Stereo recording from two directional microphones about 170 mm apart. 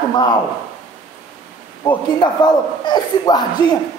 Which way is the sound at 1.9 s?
25° left (ahead or behind).